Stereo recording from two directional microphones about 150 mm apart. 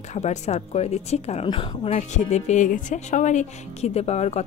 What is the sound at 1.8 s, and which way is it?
Speech, 50° left (ahead or behind).